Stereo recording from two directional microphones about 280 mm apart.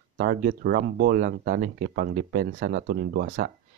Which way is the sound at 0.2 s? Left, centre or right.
Right.